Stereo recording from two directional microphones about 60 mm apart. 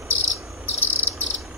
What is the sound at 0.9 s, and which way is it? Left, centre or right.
Cricket, left.